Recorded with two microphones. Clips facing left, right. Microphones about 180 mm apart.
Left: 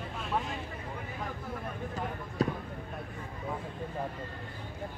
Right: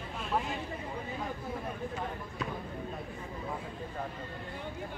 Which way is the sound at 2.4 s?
35° left (ahead or behind).